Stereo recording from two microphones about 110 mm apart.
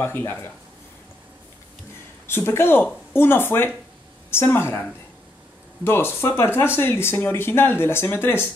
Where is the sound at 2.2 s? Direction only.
20° left (ahead or behind).